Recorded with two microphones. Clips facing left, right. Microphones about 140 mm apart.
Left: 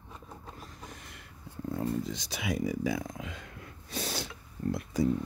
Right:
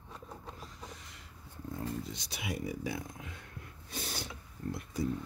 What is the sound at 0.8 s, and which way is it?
Vehicle, 55° left (ahead or behind).